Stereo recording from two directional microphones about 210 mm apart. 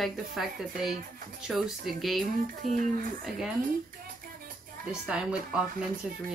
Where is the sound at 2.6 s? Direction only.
35° right (ahead or behind).